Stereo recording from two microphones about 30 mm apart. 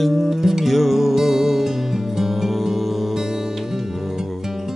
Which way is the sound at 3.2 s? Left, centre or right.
Centre.